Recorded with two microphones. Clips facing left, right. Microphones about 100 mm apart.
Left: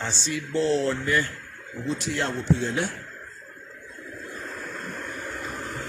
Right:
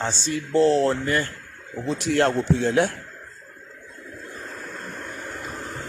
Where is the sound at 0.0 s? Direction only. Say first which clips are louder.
Right 4 dB; 40° right (ahead or behind).